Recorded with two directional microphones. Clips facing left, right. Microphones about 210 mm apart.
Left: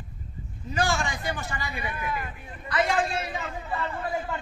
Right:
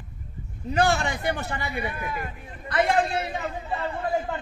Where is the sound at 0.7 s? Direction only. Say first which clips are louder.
Right 4 dB; 60° right (ahead or behind).